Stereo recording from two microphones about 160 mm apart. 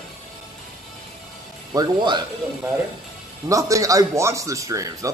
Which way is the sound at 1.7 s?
25° right (ahead or behind).